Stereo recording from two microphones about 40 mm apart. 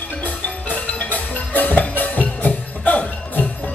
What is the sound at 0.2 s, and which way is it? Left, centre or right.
Music, left.